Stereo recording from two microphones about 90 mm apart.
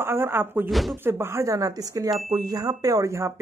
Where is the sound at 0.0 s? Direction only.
25° right (ahead or behind).